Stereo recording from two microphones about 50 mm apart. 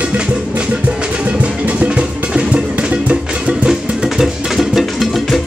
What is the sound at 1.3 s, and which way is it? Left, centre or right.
Music, right.